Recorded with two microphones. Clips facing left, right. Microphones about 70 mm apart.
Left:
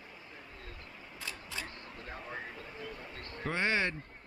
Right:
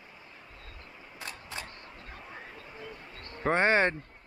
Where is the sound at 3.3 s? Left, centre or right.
Right.